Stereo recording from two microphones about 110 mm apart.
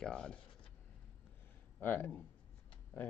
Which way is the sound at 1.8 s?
20° left (ahead or behind).